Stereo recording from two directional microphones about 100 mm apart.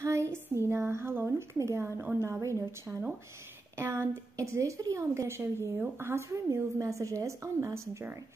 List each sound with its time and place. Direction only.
0.0 s a woman's voice: 30° right (ahead or behind)